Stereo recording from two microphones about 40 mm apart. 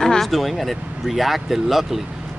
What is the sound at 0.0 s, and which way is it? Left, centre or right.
Vehicle, centre.